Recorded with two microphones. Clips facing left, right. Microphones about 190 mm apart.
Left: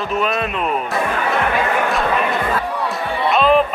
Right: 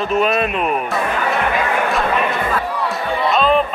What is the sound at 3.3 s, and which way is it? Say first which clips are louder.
Music: left 2 dB; 5° left (ahead or behind).